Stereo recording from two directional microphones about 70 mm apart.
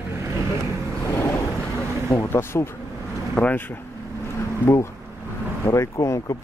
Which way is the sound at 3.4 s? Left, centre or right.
Left.